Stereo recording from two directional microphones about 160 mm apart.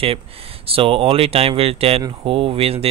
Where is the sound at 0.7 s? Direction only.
35° right (ahead or behind).